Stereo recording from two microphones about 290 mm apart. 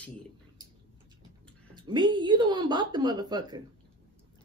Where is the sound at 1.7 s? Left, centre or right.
Centre.